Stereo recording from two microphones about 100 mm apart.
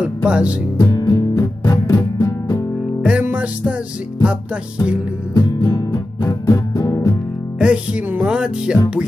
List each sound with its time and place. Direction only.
0.0 s music: 10° right (ahead or behind)
0.7 s music: 40° left (ahead or behind)
3.0 s music: 15° right (ahead or behind)
5.3 s music: 40° left (ahead or behind)
7.5 s music: 10° right (ahead or behind)